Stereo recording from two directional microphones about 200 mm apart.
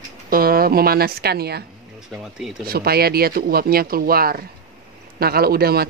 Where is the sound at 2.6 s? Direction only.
50° right (ahead or behind).